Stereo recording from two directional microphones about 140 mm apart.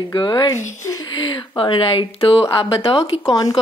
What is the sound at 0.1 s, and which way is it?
A woman's voice, 30° left (ahead or behind).